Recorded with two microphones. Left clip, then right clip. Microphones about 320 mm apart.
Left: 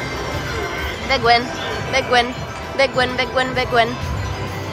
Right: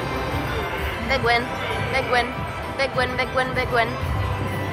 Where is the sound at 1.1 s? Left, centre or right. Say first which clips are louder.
Left 6 dB; centre.